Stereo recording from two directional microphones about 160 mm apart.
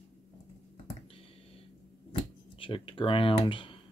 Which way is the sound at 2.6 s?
35° left (ahead or behind).